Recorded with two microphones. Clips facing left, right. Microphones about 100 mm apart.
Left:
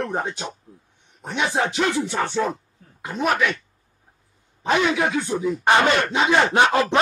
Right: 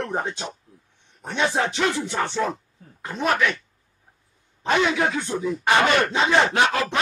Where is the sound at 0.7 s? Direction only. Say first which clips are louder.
Left 5 dB; 35° left (ahead or behind).